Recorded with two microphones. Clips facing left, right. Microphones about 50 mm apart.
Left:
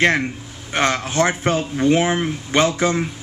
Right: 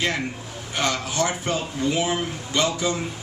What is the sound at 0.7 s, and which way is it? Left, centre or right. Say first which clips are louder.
Speech: left 6 dB; left.